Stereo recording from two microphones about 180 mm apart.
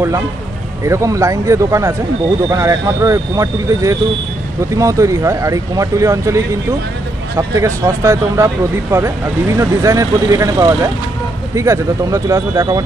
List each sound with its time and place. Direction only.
0.8 s speech: 15° right (ahead or behind)